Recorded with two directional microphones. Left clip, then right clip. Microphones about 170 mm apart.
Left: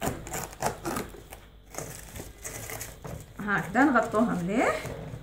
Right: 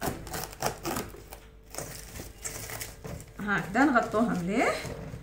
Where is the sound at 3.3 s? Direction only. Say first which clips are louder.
Left 2 dB; 5° left (ahead or behind).